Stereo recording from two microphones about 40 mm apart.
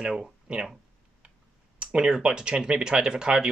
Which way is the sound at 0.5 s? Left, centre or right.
Right.